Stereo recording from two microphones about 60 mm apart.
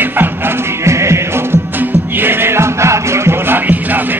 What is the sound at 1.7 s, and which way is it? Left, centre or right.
Music, right.